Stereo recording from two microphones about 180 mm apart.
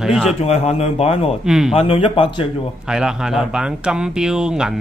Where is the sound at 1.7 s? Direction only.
30° left (ahead or behind).